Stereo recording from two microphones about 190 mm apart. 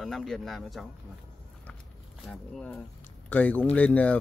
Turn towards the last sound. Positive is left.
turn(degrees=10)  # may be behind; listen again after turning